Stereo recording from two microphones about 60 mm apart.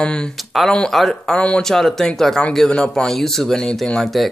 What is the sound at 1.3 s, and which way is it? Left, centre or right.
Speech, centre.